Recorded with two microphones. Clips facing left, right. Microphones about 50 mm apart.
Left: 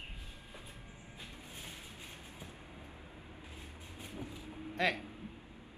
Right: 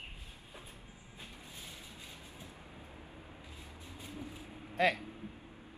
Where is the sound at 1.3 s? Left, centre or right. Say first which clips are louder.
Left 1 dB; left.